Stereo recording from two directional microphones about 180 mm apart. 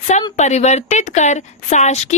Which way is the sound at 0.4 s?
40° left (ahead or behind).